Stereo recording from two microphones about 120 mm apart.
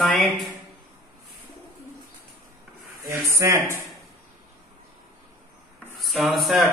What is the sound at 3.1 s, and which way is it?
Speech, 20° right (ahead or behind).